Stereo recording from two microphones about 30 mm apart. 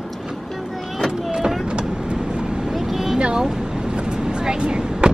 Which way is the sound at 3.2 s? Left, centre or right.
Right.